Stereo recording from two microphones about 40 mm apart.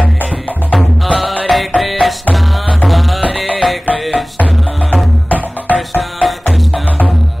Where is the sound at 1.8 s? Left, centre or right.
Centre.